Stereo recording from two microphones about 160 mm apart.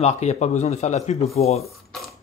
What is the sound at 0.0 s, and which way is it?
Speech, 45° left (ahead or behind).